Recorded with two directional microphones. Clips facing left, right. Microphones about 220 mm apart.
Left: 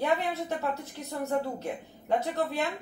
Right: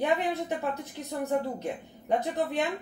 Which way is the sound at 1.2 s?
15° right (ahead or behind).